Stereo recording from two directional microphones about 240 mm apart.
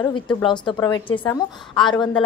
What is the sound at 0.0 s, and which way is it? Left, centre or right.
A woman's voice, centre.